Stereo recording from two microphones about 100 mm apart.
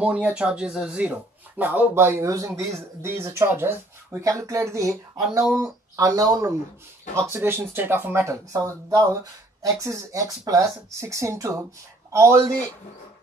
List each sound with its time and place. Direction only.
0.0 s speech: 10° right (ahead or behind); by 6.5 s 35° right (ahead or behind)
7.2 s speech: 25° right (ahead or behind)